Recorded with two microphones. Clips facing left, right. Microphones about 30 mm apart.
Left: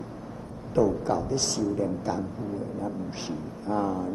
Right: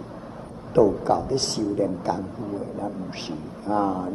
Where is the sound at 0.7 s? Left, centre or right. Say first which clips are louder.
Right 5 dB; right.